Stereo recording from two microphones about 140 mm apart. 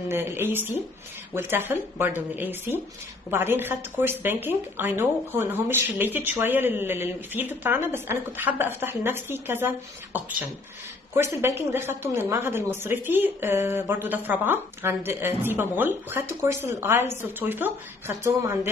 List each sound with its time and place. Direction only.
0.1 s a woman's voice: 15° right (ahead or behind)